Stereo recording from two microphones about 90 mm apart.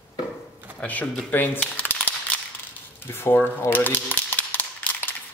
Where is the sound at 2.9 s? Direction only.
25° left (ahead or behind).